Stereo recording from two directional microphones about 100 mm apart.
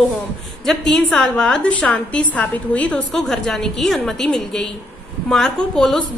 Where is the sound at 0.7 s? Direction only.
5° left (ahead or behind).